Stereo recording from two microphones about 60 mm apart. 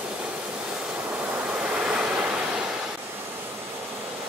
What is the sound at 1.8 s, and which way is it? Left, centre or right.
Waves, centre.